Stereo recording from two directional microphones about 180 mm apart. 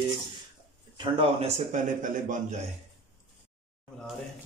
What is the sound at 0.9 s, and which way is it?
Speech, 30° right (ahead or behind).